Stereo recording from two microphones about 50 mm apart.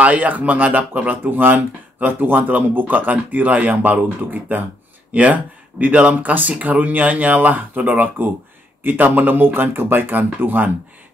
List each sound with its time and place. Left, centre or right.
0.0 s speech: right